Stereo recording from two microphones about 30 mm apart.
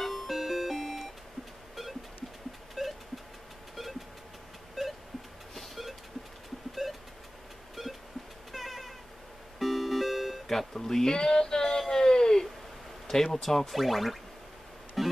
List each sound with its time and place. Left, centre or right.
0.0 s music: centre
0.3 s music: centre
0.7 s alarm clock: centre
2.8 s vehicle: centre
4.8 s a sound: centre
5.5 s a sound: centre
6.7 s vehicle: centre
7.8 s vehicle: centre
8.5 s cat: centre
9.6 s music: centre
10.6 s speech: centre
11.9 s a sound: left
13.1 s speech: centre
15.0 s music: centre